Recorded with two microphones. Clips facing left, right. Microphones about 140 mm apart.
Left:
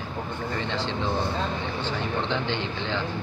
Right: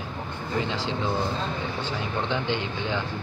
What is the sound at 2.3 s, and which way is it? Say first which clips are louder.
Speech: even; 15° right (ahead or behind).